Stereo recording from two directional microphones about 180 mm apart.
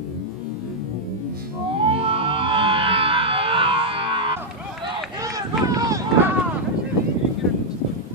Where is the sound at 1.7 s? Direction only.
30° right (ahead or behind).